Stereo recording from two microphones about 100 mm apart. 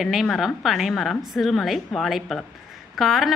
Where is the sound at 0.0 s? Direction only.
Centre (ahead or behind).